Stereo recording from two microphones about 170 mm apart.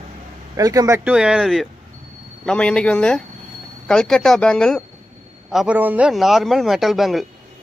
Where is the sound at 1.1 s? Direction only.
5° right (ahead or behind).